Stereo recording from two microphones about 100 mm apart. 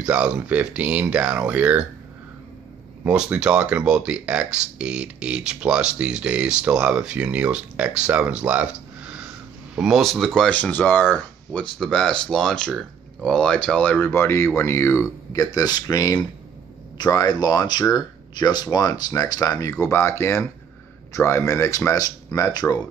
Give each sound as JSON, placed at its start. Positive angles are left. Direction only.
{"t": 0.0, "sound": "speech", "side_deg": -10}
{"t": 3.1, "sound": "speech", "side_deg": -10}
{"t": 9.8, "sound": "speech", "side_deg": 0}